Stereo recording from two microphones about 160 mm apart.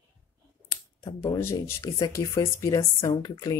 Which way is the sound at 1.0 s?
20° left (ahead or behind).